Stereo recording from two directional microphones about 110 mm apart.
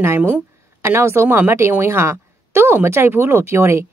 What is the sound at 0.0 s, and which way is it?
A woman's voice, 20° right (ahead or behind).